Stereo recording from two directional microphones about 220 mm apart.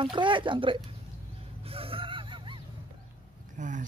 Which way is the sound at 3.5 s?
35° right (ahead or behind).